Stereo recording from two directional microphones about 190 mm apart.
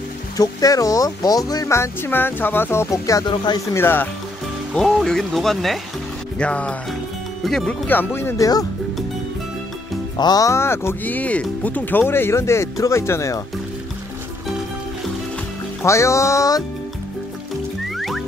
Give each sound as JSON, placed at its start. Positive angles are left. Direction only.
{"t": 0.4, "sound": "speech", "side_deg": 20}
{"t": 10.1, "sound": "speech", "side_deg": 20}
{"t": 15.8, "sound": "speech", "side_deg": 15}
{"t": 17.9, "sound": "music", "side_deg": 0}